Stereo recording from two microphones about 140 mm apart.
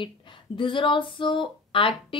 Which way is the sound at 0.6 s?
35° left (ahead or behind).